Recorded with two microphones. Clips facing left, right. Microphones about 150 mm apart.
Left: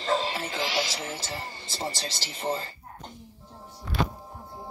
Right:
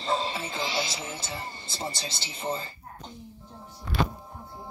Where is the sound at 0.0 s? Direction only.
90° left.